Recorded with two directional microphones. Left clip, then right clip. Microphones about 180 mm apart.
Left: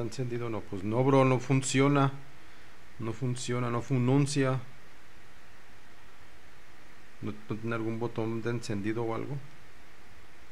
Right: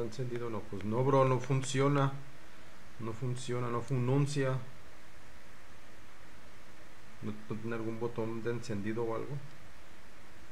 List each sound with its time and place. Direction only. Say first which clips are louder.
0.1 s speech: left 3 dB; 55° left (ahead or behind)
3.1 s speech: left 4 dB; 55° left (ahead or behind)
7.2 s speech: left 4 dB; 55° left (ahead or behind)